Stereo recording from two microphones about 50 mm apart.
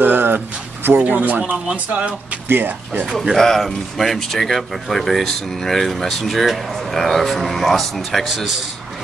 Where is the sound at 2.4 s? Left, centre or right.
Right.